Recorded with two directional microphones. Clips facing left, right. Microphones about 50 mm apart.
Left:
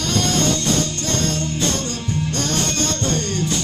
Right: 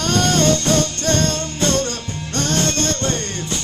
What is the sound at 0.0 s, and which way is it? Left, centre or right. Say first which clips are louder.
Music: right 3 dB; right.